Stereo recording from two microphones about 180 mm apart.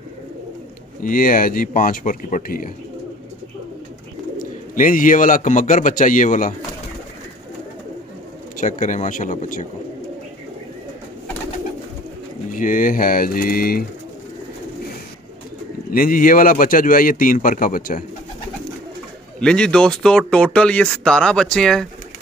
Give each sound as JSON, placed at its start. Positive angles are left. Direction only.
{"t": 1.0, "sound": "a man's voice", "side_deg": 50}
{"t": 4.4, "sound": "a man's voice", "side_deg": 50}
{"t": 8.5, "sound": "a man's voice", "side_deg": 45}
{"t": 12.4, "sound": "a man's voice", "side_deg": 50}
{"t": 15.9, "sound": "a man's voice", "side_deg": 50}
{"t": 19.4, "sound": "speech", "side_deg": 5}